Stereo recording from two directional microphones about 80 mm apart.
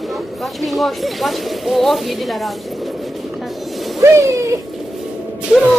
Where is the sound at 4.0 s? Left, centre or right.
Right.